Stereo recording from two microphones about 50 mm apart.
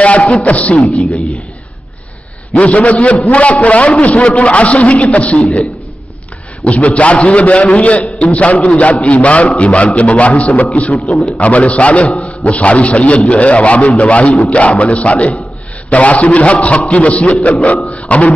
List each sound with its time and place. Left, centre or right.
0.0 s a man's voice: left
2.5 s a man's voice: left